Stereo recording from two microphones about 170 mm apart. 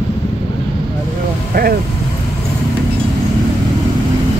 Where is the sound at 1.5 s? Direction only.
60° right (ahead or behind).